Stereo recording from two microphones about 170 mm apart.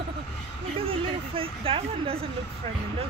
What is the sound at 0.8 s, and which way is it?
Speech, 30° right (ahead or behind).